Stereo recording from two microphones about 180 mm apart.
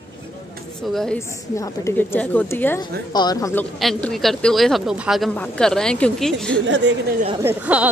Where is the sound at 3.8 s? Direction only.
5° left (ahead or behind).